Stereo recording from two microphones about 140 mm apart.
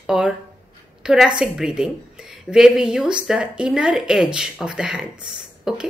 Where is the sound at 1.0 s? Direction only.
5° right (ahead or behind).